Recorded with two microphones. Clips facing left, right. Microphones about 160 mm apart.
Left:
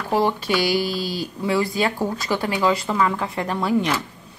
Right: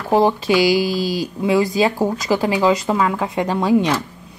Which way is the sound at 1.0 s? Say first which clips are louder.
Right 5 dB; 90° right.